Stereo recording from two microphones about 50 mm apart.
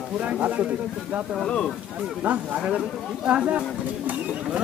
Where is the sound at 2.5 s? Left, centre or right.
Right.